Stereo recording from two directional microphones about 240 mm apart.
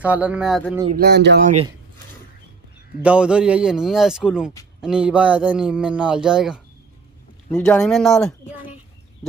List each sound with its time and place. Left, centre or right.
0.0 s speech: centre
0.9 s speech: right
3.0 s speech: centre